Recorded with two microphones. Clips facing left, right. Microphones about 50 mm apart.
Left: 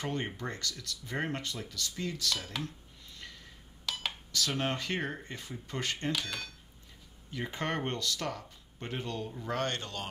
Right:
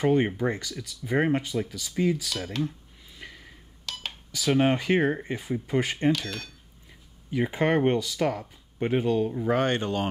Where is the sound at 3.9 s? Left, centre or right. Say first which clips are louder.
Even; centre.